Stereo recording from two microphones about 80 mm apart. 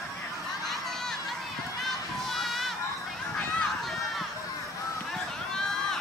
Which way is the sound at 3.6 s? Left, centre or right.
Centre.